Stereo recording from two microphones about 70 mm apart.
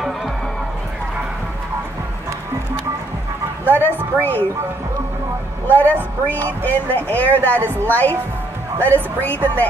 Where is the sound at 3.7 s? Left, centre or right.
Left.